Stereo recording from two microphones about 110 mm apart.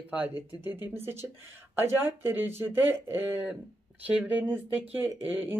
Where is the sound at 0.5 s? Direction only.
20° right (ahead or behind).